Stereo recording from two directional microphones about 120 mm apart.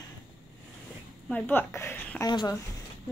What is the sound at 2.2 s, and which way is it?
Speech, 35° left (ahead or behind).